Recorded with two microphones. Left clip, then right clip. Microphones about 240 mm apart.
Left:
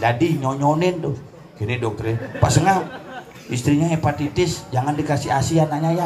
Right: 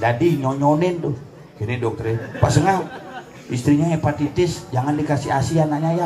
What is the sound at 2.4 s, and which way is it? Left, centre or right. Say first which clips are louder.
A man's voice: left 1 dB; left.